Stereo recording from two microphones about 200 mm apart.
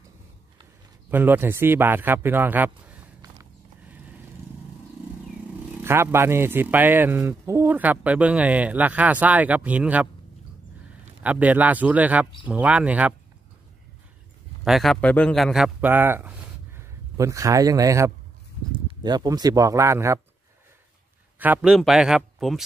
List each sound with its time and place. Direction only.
1.1 s speech: 10° right (ahead or behind)
5.8 s a man's voice: 10° right (ahead or behind)
11.2 s a man's voice: 5° right (ahead or behind)
14.6 s a man's voice: centre (ahead or behind)
21.4 s speech: 5° right (ahead or behind)